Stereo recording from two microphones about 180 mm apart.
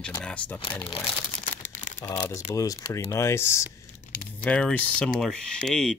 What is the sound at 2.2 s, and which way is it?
Speech, 10° left (ahead or behind).